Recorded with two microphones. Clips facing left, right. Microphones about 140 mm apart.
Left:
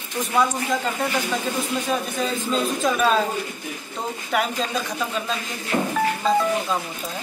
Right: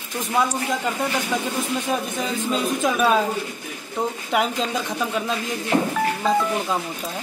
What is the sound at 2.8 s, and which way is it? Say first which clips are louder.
Speech: right 1 dB; 15° right (ahead or behind).